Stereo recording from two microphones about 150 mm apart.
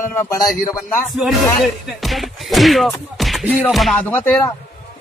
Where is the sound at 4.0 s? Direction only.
10° left (ahead or behind).